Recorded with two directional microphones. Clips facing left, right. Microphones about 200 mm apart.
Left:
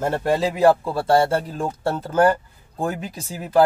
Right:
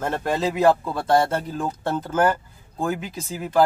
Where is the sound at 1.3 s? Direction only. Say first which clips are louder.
Left 2 dB; 30° left (ahead or behind).